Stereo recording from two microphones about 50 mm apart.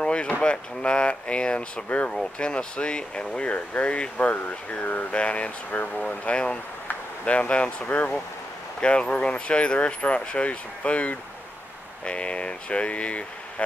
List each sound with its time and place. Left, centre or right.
0.0 s speech: left